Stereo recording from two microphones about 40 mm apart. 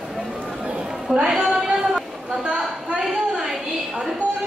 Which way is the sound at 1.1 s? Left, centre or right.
Centre.